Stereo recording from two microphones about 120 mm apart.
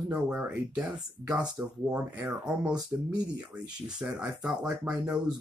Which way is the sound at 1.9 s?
10° right (ahead or behind).